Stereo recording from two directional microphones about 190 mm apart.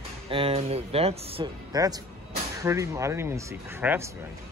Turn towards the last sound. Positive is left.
turn(degrees=-15)  # may be behind; listen again after turning